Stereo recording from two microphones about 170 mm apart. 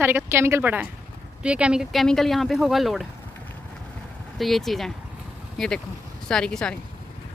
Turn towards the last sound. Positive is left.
turn(degrees=5)  # may be behind; listen again after turning